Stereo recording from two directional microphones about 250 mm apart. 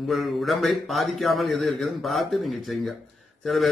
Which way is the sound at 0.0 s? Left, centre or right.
Centre.